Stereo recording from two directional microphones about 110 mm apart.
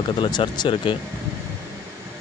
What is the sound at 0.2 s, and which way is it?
Speech, 45° left (ahead or behind).